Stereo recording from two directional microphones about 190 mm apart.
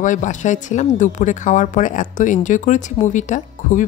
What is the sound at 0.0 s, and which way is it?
Speech, 40° left (ahead or behind).